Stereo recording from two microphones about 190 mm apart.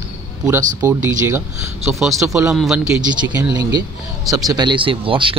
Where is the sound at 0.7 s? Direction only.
15° right (ahead or behind).